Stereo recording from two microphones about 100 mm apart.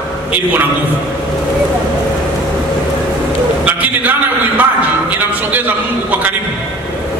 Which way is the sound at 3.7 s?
15° right (ahead or behind).